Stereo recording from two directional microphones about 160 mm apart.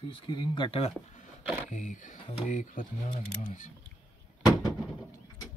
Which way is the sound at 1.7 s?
50° left (ahead or behind).